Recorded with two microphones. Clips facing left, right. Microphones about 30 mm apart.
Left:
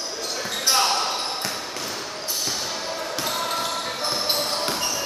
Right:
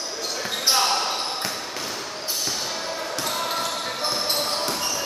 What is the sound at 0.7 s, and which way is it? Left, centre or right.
Basketball bounce, centre.